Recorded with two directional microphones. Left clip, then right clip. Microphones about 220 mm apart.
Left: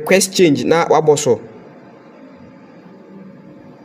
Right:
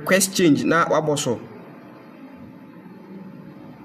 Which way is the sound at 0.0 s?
20° left (ahead or behind).